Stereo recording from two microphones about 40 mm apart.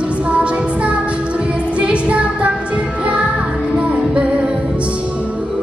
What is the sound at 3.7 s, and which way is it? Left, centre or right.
Music, right.